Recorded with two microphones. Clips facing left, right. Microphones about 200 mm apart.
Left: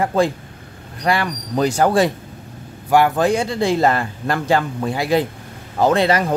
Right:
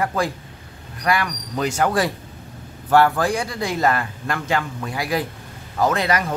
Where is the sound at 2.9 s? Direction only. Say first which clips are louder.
Left 2 dB; 15° left (ahead or behind).